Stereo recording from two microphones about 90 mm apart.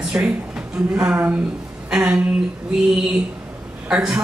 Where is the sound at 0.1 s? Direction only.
15° right (ahead or behind).